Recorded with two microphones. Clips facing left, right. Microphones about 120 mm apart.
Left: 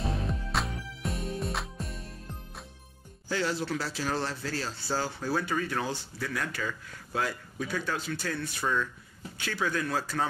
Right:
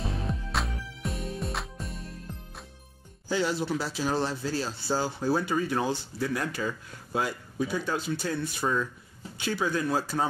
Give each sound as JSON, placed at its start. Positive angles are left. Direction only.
{"t": 0.0, "sound": "music", "side_deg": 0}
{"t": 3.3, "sound": "speech", "side_deg": -15}